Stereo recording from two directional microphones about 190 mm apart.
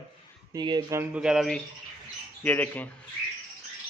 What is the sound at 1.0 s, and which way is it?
A man's voice, 5° right (ahead or behind).